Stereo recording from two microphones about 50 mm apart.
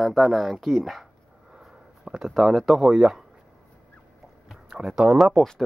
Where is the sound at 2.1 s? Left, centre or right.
Centre.